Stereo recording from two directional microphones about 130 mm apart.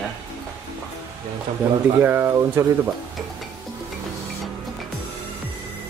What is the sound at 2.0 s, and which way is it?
Speech, 15° right (ahead or behind).